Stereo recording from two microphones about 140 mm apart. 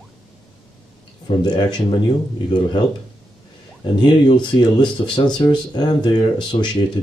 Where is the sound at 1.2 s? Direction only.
30° left (ahead or behind).